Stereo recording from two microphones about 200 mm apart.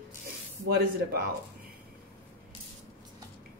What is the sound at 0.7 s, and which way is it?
Speech, 50° right (ahead or behind).